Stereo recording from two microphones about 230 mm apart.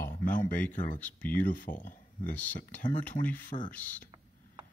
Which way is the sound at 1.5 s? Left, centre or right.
Left.